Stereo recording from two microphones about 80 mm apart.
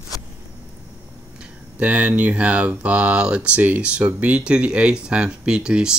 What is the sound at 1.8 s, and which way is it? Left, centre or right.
Speech, centre.